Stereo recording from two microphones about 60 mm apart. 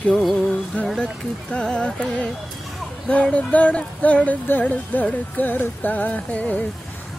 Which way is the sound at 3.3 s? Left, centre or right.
Left.